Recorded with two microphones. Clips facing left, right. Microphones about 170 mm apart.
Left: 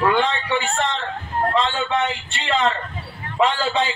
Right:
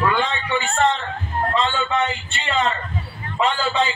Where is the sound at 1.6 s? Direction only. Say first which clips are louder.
Even; 75° left (ahead or behind).